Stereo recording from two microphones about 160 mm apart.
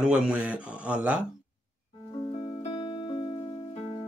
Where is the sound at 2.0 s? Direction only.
20° left (ahead or behind).